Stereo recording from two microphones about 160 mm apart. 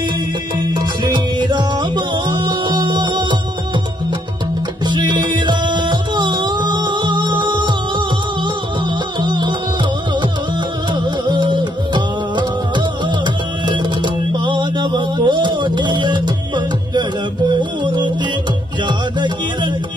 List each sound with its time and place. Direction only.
0.6 s music: 30° right (ahead or behind)
4.8 s music: 30° right (ahead or behind)
9.2 s music: 30° right (ahead or behind)
10.9 s music: 30° right (ahead or behind)